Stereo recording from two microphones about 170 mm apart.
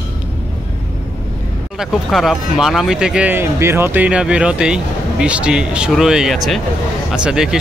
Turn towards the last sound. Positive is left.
turn(degrees=-5)  # may be behind; listen again after turning